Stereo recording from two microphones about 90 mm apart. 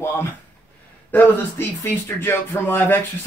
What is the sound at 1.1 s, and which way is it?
Speech, 20° left (ahead or behind).